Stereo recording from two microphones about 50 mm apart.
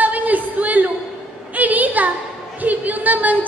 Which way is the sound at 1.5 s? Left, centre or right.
Right.